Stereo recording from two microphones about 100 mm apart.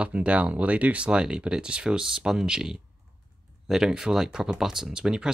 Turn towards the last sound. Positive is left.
turn(degrees=-5)  # may be behind; listen again after turning